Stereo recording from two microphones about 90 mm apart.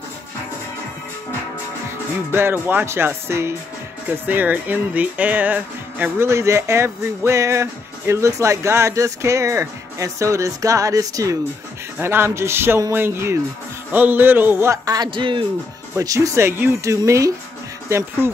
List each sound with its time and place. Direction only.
2.3 s speech: 25° right (ahead or behind)
6.2 s music: 30° right (ahead or behind)
12.0 s speech: 25° right (ahead or behind)
15.0 s speech: 70° right (ahead or behind)
16.0 s music: 35° right (ahead or behind)